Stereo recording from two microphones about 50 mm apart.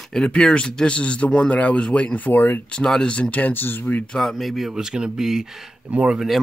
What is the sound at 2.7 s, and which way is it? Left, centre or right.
Speech, centre.